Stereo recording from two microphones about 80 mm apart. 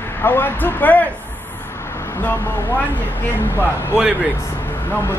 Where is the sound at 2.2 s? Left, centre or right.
Left.